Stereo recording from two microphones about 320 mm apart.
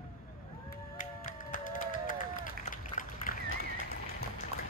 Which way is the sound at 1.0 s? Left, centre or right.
Left.